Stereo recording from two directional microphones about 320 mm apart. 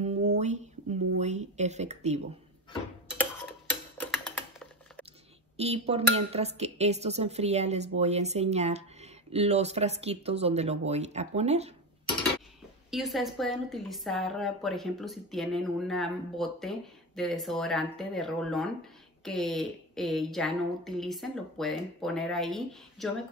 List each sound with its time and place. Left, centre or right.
0.0 s a sound: right
4.0 s typing: centre
5.6 s speech: centre
12.9 s a woman's voice: centre